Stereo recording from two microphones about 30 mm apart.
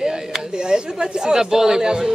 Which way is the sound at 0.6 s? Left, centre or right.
Right.